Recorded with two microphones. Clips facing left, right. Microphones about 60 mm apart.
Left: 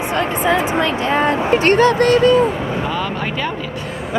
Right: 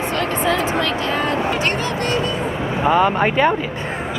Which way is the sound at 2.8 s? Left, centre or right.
Right.